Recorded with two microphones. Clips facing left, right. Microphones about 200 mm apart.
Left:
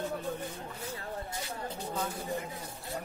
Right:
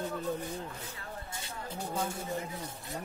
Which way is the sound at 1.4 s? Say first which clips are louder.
Left 2 dB; 25° right (ahead or behind).